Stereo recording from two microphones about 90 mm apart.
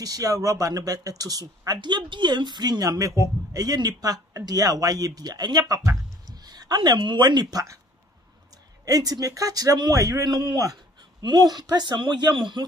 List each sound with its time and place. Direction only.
0.0 s speech: 40° right (ahead or behind)
8.8 s speech: 45° right (ahead or behind); by 12.6 s 60° right (ahead or behind)